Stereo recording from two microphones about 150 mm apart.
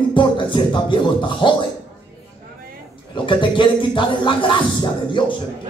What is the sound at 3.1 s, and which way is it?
Speech, 35° left (ahead or behind).